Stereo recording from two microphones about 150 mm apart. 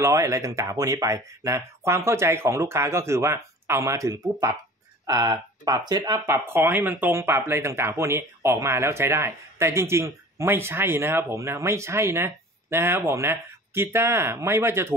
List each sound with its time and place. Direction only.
0.0 s speech: 20° right (ahead or behind)